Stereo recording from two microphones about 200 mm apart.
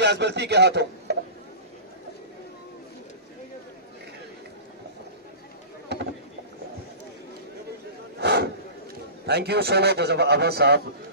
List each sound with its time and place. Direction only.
0.0 s a man's voice: 60° right (ahead or behind)
8.2 s a sound: 55° right (ahead or behind)
9.2 s a man's voice: 55° right (ahead or behind)